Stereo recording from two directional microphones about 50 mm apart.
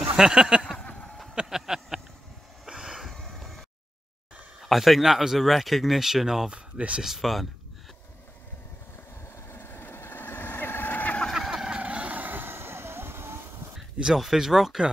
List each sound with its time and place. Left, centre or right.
0.2 s speech: centre
1.5 s a sound: centre
3.1 s a sound: centre
4.6 s speech: centre
6.5 s speech: right
7.0 s speech: centre
9.5 s vehicle: left
11.3 s vehicle: centre
11.7 s vehicle: right
12.2 s vehicle: right
13.9 s speech: centre